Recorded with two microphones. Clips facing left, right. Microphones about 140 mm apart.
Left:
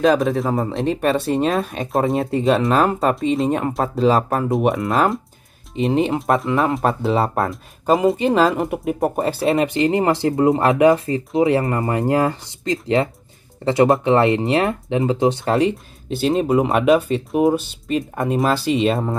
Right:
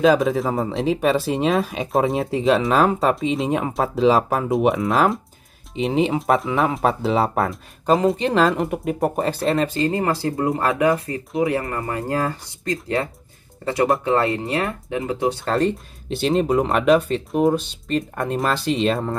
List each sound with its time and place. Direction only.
0.0 s speech: centre (ahead or behind); by 15.5 s 25° left (ahead or behind)
15.5 s speech: 5° left (ahead or behind)